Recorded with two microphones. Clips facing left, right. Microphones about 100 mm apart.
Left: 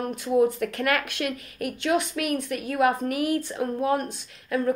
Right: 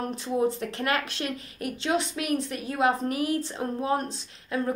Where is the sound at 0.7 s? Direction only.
30° right (ahead or behind).